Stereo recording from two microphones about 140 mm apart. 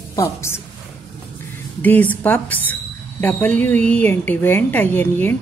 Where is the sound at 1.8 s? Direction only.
10° left (ahead or behind).